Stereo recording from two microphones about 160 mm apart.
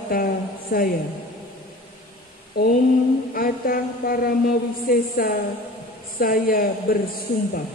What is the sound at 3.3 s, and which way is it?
A man's voice, 65° left (ahead or behind).